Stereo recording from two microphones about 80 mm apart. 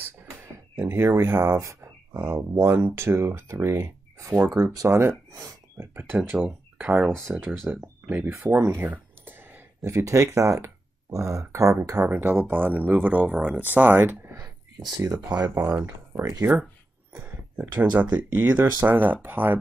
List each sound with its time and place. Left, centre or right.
0.7 s speech: right
8.3 s a sound: right
9.8 s speech: right
12.0 s speech: right
14.3 s a sound: right
15.0 s speech: right
15.6 s speech: right
17.1 s a sound: right
17.9 s speech: right